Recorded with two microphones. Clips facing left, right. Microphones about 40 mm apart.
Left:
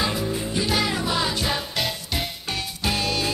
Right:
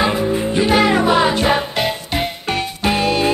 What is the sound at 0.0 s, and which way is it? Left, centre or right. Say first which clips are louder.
Music: right 8 dB; right.